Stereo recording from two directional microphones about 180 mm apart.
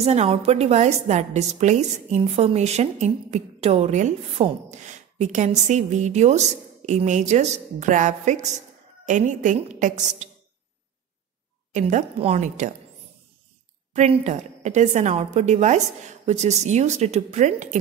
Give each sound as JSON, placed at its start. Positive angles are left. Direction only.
{"t": 0.0, "sound": "a woman's voice", "side_deg": -35}
{"t": 11.7, "sound": "a woman's voice", "side_deg": -40}
{"t": 13.9, "sound": "a woman's voice", "side_deg": -40}